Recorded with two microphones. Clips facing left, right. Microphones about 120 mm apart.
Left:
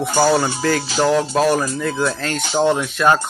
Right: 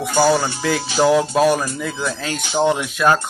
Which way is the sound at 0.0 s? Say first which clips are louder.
Even; centre (ahead or behind).